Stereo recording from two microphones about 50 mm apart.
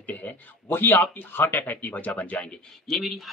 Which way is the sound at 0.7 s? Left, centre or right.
Left.